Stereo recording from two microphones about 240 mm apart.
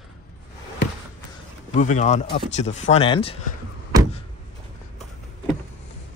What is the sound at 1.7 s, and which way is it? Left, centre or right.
Speech, left.